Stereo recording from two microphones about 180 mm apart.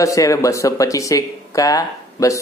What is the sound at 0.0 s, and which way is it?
A man's voice, 20° left (ahead or behind).